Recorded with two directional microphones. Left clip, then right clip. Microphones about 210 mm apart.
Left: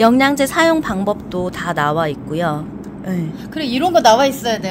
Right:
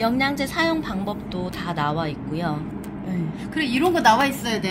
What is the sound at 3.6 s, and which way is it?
A woman's voice, 55° left (ahead or behind).